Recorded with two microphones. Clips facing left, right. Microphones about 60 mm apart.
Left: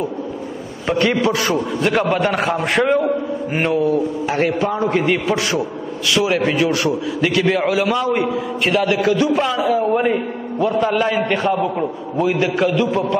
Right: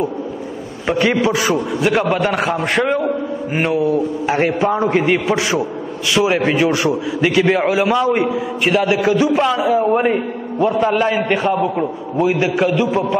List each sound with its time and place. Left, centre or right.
0.8 s a man's voice: centre